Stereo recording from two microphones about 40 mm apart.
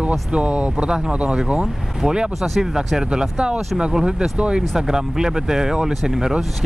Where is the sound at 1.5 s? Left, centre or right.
Centre.